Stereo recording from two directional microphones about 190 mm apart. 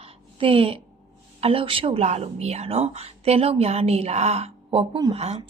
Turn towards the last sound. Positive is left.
turn(degrees=-35)  # may be behind; listen again after turning